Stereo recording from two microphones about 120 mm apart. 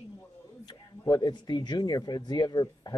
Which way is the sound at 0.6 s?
35° left (ahead or behind).